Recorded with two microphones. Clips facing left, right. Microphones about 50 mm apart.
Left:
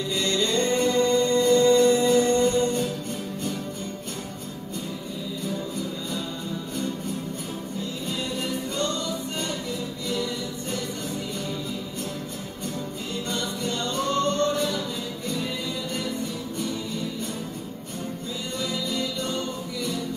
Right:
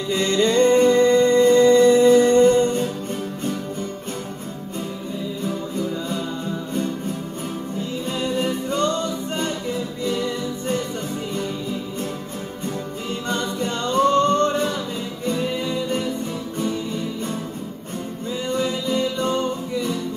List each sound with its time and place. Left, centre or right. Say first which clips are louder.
0.1 s music: right 7 dB; right
8.4 s music: right 7 dB; right
13.1 s music: right 5 dB; right
18.5 s music: right 7 dB; right